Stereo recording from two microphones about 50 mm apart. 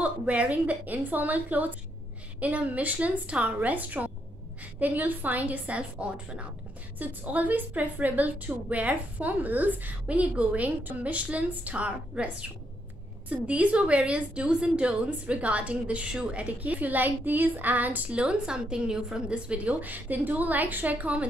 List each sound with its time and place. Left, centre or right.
0.0 s a woman's voice: right
18.1 s a woman's voice: centre